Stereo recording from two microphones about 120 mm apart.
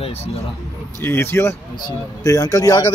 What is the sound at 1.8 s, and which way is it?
Speech, 30° left (ahead or behind).